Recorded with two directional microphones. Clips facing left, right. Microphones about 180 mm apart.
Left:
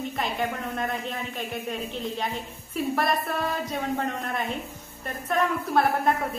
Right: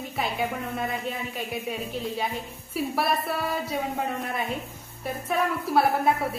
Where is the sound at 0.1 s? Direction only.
5° right (ahead or behind).